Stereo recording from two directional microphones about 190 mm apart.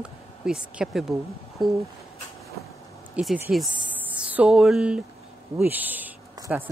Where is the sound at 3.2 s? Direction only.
5° right (ahead or behind).